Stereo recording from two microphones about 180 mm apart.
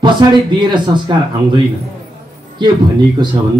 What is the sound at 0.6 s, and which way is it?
A man's voice, 25° right (ahead or behind).